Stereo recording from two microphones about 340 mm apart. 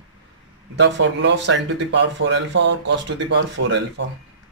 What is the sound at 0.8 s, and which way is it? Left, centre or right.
Speech, right.